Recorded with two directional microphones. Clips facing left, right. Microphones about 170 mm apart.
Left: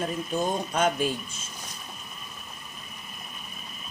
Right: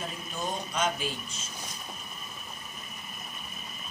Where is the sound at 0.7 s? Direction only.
55° left (ahead or behind).